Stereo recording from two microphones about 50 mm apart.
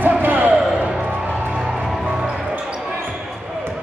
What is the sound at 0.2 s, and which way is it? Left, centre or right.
Basketball bounce, right.